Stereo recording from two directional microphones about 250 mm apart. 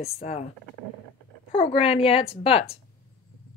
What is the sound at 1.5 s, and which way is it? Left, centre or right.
Speech, left.